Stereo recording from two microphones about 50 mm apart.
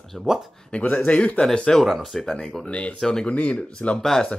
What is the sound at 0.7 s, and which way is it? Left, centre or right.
Speech, left.